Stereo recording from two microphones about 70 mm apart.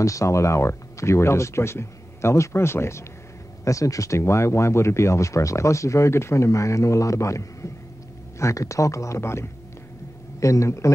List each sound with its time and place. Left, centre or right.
0.0 s speech: left
3.6 s speech: left